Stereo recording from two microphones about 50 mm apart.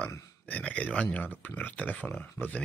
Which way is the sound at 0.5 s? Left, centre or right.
Left.